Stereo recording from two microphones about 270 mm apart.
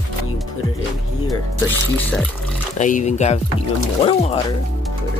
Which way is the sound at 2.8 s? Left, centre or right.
Left.